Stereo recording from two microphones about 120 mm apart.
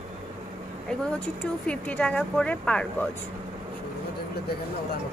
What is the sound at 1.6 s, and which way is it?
Speech, 10° left (ahead or behind).